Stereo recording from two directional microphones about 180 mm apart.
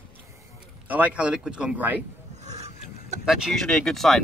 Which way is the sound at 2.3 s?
40° right (ahead or behind).